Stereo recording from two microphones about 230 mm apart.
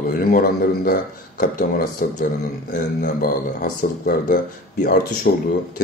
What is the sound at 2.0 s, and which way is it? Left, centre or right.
Speech, left.